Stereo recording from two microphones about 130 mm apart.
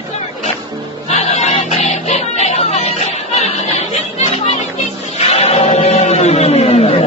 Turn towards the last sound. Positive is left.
turn(degrees=50)  # may be behind; listen again after turning